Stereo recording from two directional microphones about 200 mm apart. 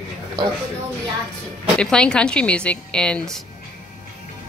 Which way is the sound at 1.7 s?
5° left (ahead or behind).